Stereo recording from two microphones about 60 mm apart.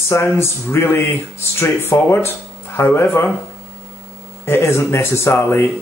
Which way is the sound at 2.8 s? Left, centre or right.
Left.